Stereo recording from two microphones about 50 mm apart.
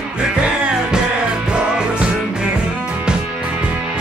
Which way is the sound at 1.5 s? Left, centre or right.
Centre.